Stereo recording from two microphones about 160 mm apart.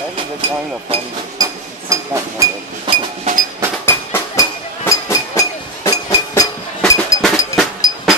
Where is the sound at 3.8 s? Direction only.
20° left (ahead or behind).